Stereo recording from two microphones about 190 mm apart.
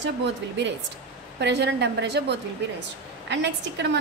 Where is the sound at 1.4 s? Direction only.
65° right (ahead or behind).